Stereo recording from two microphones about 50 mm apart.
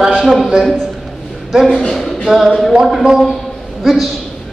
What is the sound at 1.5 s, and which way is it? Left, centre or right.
Speech, centre.